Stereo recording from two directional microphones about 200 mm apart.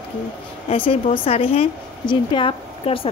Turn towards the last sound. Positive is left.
turn(degrees=25)  # may be behind; listen again after turning